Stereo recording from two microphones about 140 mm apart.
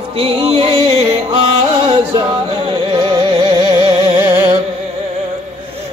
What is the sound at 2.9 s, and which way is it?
Music, 30° right (ahead or behind).